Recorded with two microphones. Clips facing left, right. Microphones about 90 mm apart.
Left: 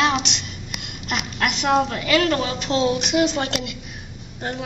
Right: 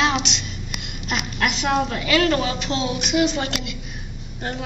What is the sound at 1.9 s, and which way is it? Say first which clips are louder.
Speech: even; centre (ahead or behind).